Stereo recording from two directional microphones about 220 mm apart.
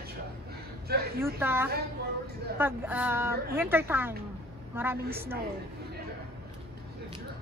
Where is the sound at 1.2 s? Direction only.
10° right (ahead or behind).